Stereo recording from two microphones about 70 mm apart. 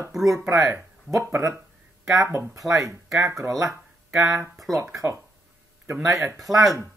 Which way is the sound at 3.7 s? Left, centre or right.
Centre.